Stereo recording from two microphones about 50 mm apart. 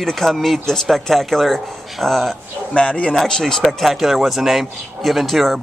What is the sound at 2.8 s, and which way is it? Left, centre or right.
Speech, left.